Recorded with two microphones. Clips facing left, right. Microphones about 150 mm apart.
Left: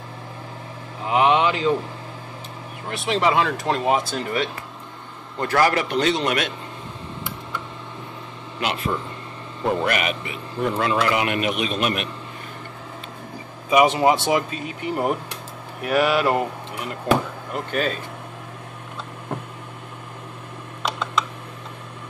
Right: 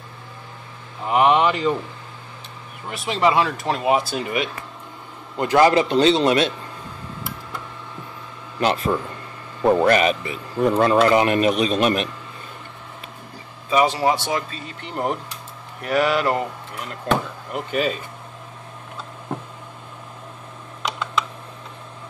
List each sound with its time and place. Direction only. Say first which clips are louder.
1.1 s speech: right 1 dB; centre (ahead or behind)
2.9 s speech: right 1 dB; centre (ahead or behind); by 6.5 s 25° right (ahead or behind)
8.5 s a man's voice: right 5 dB; 40° right (ahead or behind)
13.7 s speech: left 2 dB; 20° left (ahead or behind)
17.6 s speech: right 2 dB; 5° right (ahead or behind)